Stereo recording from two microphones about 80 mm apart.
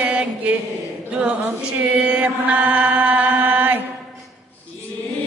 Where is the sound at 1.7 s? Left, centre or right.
Centre.